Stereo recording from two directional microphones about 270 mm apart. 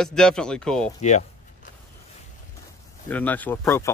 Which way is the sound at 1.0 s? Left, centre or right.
Left.